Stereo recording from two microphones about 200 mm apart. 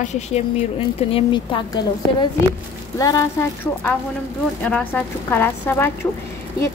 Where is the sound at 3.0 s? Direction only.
15° left (ahead or behind).